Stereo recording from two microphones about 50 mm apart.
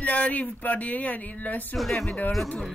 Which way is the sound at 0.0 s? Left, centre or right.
Left.